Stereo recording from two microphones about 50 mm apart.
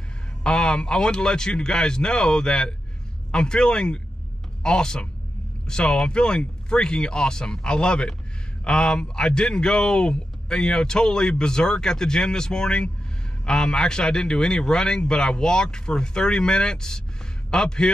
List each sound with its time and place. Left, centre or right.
0.4 s a man's voice: centre